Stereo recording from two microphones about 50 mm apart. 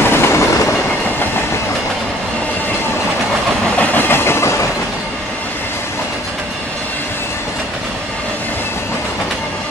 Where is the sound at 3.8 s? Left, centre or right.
Left.